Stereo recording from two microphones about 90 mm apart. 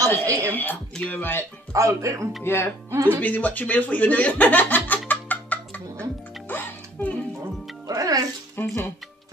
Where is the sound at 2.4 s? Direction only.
25° left (ahead or behind).